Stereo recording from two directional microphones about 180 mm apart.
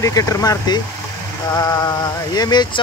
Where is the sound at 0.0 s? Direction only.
20° left (ahead or behind).